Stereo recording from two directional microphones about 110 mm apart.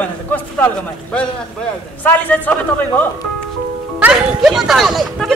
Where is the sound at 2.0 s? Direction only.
15° left (ahead or behind).